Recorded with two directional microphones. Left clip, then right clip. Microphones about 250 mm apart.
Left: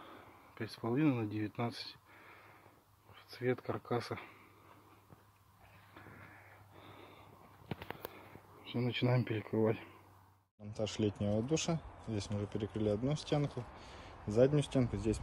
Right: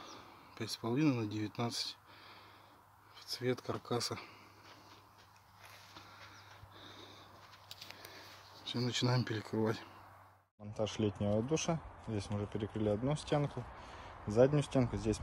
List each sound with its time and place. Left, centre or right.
0.6 s speech: centre
3.3 s speech: centre
8.6 s a sound: centre
9.0 s speech: centre